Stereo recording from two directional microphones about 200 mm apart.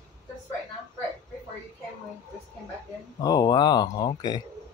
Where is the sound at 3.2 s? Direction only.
20° left (ahead or behind).